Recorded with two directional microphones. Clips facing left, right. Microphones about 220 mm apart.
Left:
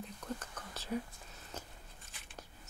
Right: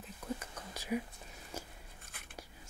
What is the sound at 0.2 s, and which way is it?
Whispering, 10° right (ahead or behind).